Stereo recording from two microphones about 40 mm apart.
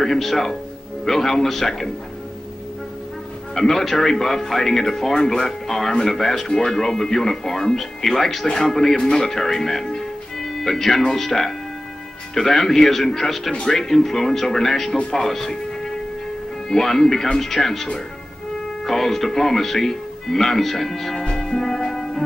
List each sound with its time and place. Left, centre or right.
0.0 s speech: centre
3.5 s speech: centre
13.5 s speech: left
13.7 s speech: centre
15.0 s speech: left
15.2 s music: centre
16.6 s speech: centre
21.4 s music: centre